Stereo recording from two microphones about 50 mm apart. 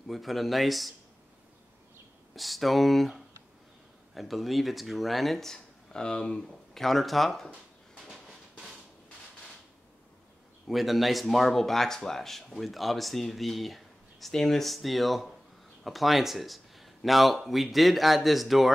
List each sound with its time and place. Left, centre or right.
0.0 s speech: centre
2.3 s speech: centre
6.8 s speech: centre
8.1 s a sound: centre
10.7 s speech: centre